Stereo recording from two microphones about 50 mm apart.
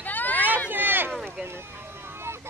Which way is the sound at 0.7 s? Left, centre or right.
Right.